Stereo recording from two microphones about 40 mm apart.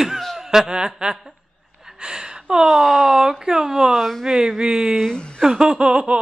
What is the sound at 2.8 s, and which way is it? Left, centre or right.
Speech, centre.